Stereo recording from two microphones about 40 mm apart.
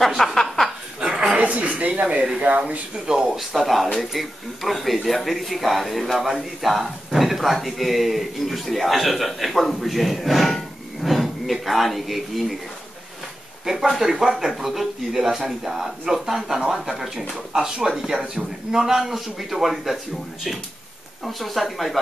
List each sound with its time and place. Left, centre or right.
0.2 s speech: centre
1.0 s chuckle: centre
1.3 s a sound: right
1.8 s speech: right
3.1 s speech: centre
10.5 s a sound: centre
13.7 s speech: centre
21.4 s speech: centre